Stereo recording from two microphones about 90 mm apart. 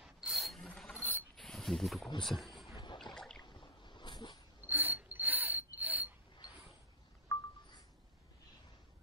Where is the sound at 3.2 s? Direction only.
5° left (ahead or behind).